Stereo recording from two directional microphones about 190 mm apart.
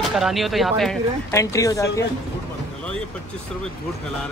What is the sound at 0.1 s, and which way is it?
Speech, centre (ahead or behind).